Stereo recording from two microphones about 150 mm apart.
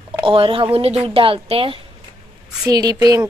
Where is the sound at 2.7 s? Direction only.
25° right (ahead or behind).